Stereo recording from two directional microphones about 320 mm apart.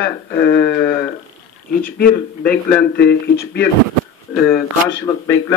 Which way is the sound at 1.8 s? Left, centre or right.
Left.